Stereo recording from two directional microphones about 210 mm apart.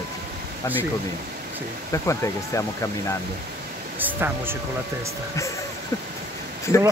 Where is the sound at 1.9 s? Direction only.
15° left (ahead or behind).